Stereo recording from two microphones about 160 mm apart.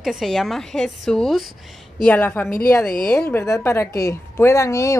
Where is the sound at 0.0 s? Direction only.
Centre (ahead or behind).